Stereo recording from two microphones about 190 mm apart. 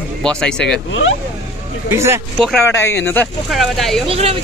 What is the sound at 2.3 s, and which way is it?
Speech, centre (ahead or behind).